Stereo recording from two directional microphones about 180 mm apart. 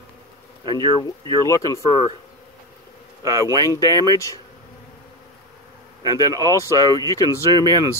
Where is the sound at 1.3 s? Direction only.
20° left (ahead or behind).